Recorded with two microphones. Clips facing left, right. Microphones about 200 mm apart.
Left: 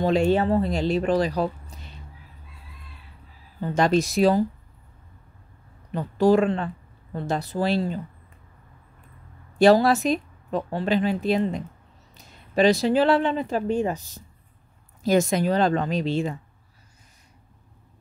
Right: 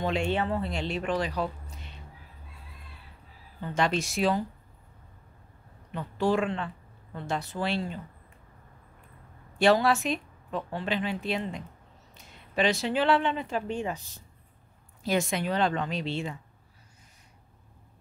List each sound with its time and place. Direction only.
0.0 s a woman's voice: 40° left (ahead or behind)
3.6 s a woman's voice: 40° left (ahead or behind)
5.9 s speech: 40° left (ahead or behind)
9.6 s a woman's voice: 40° left (ahead or behind)